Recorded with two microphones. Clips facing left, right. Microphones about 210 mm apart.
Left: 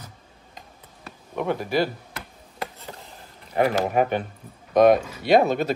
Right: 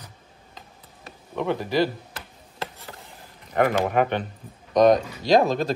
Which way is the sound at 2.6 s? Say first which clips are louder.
Left 1 dB; 15° left (ahead or behind).